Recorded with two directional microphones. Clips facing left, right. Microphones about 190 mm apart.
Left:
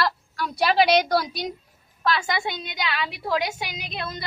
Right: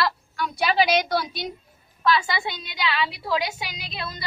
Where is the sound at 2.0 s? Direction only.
50° left (ahead or behind).